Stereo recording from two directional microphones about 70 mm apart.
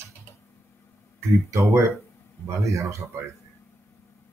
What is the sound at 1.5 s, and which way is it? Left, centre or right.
Speech, right.